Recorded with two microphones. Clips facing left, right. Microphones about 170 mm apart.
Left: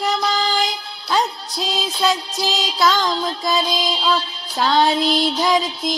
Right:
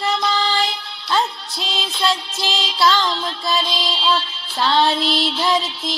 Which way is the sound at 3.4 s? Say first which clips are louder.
Left 1 dB; 15° left (ahead or behind).